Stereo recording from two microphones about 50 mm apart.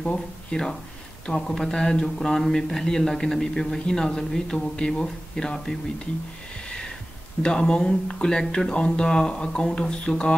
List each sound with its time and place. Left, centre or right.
0.0 s speech: centre
7.4 s speech: centre